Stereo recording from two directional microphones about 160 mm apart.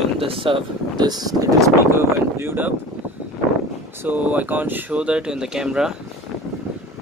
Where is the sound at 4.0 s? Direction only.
10° right (ahead or behind).